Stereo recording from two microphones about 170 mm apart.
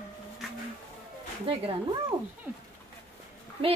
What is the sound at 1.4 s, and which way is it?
Speech, 35° right (ahead or behind).